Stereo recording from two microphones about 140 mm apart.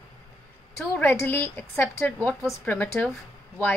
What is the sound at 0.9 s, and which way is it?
A woman's voice, 15° left (ahead or behind).